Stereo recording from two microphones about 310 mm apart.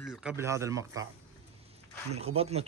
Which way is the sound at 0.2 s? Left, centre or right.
Centre.